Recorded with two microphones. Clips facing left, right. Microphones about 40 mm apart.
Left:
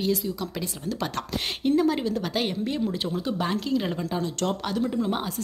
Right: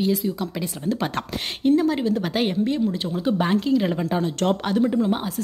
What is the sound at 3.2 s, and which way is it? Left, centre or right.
Speech, right.